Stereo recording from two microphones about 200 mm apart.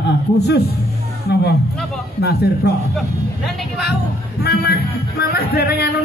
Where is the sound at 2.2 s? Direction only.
55° left (ahead or behind).